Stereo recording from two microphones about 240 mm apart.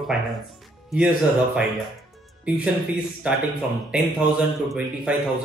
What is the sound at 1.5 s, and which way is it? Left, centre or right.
Speech, centre.